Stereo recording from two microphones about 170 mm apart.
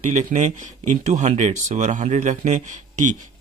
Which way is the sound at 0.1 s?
45° right (ahead or behind).